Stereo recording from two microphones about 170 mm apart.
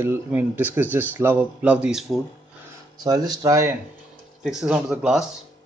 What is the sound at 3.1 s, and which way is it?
Speech, 20° right (ahead or behind).